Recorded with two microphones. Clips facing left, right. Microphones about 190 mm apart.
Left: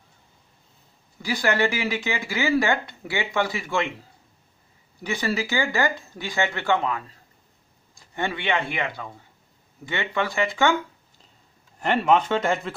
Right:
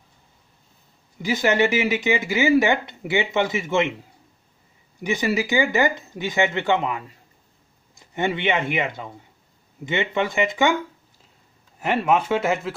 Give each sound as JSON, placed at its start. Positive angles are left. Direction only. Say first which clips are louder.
{"t": 1.2, "sound": "speech", "louder": "right 3 dB", "side_deg": -20}
{"t": 5.0, "sound": "speech", "louder": "right 4 dB", "side_deg": -15}
{"t": 11.8, "sound": "speech", "louder": "even", "side_deg": -5}